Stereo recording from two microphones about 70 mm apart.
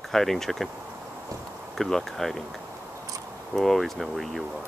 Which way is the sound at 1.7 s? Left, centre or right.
Centre.